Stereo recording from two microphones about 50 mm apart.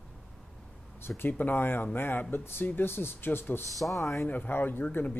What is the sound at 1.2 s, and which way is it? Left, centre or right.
Speech, left.